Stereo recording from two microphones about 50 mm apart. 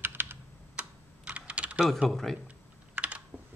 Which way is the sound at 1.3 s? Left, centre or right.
Right.